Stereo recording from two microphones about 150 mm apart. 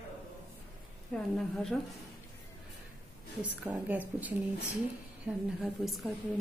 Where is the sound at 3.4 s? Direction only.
10° right (ahead or behind).